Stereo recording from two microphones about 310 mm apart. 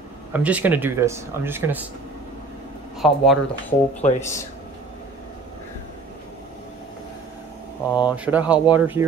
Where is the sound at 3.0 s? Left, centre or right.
Centre.